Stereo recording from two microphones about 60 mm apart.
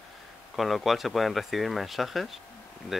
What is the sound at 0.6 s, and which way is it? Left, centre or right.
Speech, centre.